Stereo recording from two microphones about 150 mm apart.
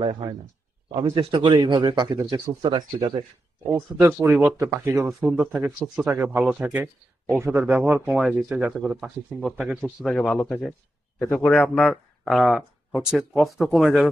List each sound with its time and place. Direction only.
0.0 s speech: 35° right (ahead or behind)
4.0 s speech: 15° right (ahead or behind)
5.2 s speech: 10° right (ahead or behind)
8.1 s speech: 5° right (ahead or behind)
10.0 s speech: 5° left (ahead or behind)